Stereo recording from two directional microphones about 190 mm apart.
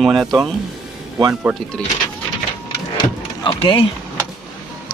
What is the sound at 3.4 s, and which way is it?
Speech, 25° left (ahead or behind).